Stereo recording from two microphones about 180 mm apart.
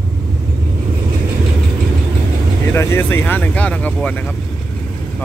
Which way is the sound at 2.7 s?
15° left (ahead or behind).